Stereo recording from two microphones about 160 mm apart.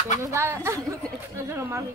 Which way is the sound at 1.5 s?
15° right (ahead or behind).